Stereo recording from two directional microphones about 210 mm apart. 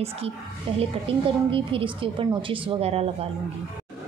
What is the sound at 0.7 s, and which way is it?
A woman's voice, 25° right (ahead or behind).